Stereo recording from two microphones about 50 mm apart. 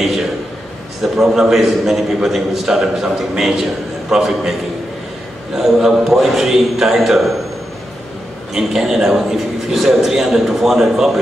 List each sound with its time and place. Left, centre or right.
1.0 s a man's voice: centre
8.5 s a man's voice: centre